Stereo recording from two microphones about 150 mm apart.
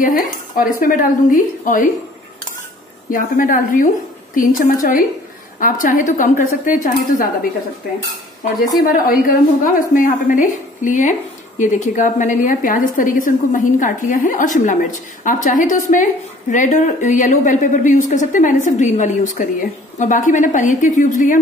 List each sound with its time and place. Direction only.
0.0 s a woman's voice: 70° left (ahead or behind)
3.1 s a woman's voice: 65° left (ahead or behind)
8.9 s a woman's voice: 70° left (ahead or behind)